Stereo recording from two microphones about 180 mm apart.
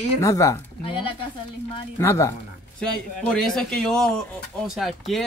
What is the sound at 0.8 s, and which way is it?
Speech, 30° left (ahead or behind).